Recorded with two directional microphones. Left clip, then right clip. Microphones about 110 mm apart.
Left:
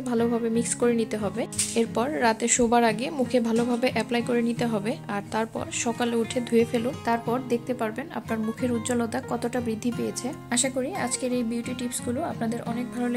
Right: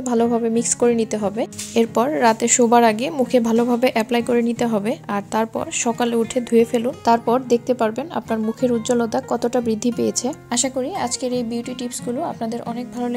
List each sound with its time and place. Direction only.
0.1 s a woman's voice: 40° right (ahead or behind)
8.8 s speech: 30° right (ahead or behind)
9.7 s speech: 50° right (ahead or behind)
10.5 s speech: 30° right (ahead or behind)